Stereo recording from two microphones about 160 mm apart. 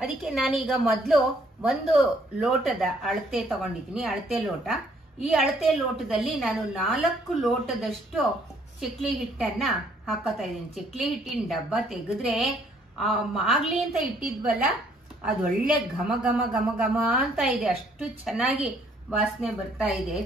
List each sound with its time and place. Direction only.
0.0 s a woman's voice: centre (ahead or behind)
15.2 s a woman's voice: 5° right (ahead or behind)